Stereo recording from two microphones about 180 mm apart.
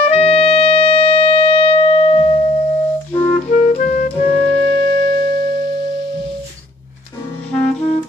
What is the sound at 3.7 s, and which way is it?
Clarinet, 45° left (ahead or behind).